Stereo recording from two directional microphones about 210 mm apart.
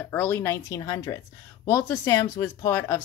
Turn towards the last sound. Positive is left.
turn(degrees=10)  # may be behind; listen again after turning